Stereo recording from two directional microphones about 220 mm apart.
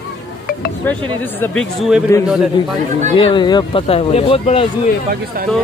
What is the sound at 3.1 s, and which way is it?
Speech, 20° left (ahead or behind).